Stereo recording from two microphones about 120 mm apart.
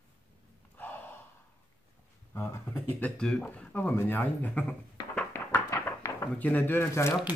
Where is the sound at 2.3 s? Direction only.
20° left (ahead or behind).